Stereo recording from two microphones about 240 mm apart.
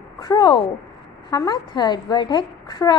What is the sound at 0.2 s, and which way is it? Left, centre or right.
A woman's voice, centre.